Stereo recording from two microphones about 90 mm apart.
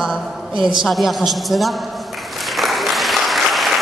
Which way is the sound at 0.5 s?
60° right (ahead or behind).